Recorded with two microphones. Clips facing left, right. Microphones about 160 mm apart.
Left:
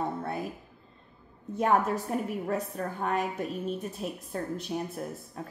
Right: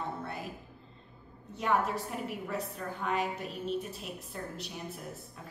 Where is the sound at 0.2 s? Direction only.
50° left (ahead or behind).